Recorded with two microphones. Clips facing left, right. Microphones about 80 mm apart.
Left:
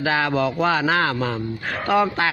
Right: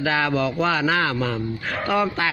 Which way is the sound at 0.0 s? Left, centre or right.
Left.